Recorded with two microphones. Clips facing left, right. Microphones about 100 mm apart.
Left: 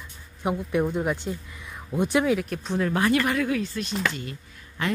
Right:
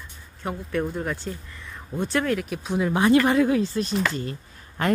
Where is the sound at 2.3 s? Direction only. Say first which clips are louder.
Even; 5° right (ahead or behind).